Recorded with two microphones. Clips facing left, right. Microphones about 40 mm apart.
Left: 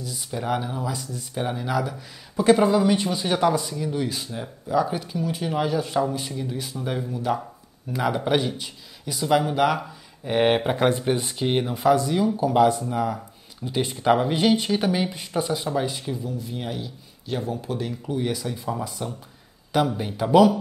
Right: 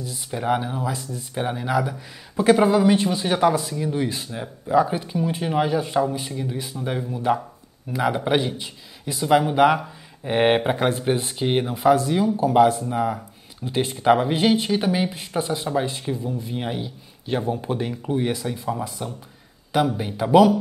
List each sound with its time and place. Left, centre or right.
0.0 s speech: centre
7.3 s speech: right
7.9 s speech: centre
10.8 s speech: centre
16.3 s speech: right; by 20.4 s centre